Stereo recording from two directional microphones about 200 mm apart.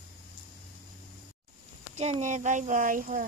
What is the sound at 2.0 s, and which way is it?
Speech, 35° right (ahead or behind).